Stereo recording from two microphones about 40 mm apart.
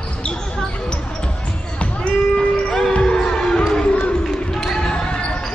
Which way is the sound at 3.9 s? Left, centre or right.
Left.